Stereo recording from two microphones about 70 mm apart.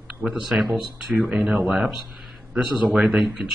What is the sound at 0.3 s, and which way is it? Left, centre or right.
Speech, centre.